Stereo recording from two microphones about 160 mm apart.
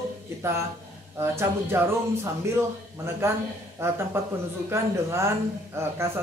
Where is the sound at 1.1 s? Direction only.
15° right (ahead or behind).